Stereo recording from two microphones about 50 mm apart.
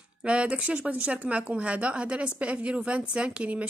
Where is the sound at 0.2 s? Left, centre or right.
Right.